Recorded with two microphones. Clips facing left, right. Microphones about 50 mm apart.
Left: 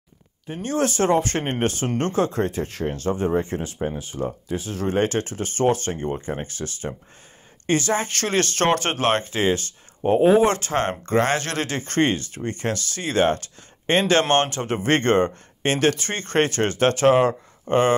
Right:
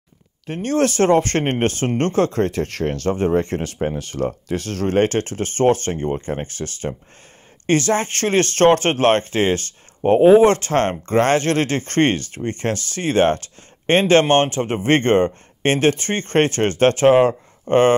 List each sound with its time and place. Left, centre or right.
0.5 s speech: right
4.0 s speech: right